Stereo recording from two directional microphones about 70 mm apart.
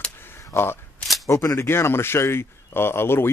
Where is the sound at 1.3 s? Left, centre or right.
Left.